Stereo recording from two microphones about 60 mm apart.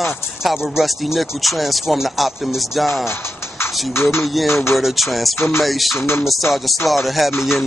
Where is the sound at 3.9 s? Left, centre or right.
Left.